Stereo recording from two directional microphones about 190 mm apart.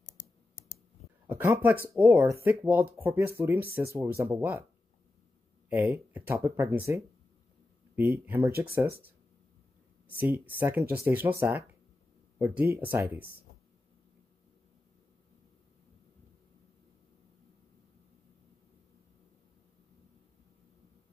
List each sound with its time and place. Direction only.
0.0 s computer keyboard: 45° left (ahead or behind)
1.2 s speech: 10° right (ahead or behind)
5.7 s speech: 10° right (ahead or behind)
8.3 s speech: 15° right (ahead or behind)
10.1 s speech: 10° right (ahead or behind)